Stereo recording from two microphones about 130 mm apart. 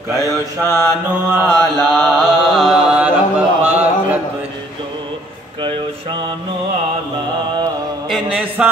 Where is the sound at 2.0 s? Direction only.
Centre (ahead or behind).